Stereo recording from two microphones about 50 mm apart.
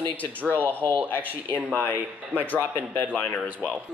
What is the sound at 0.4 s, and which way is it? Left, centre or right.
Speech, right.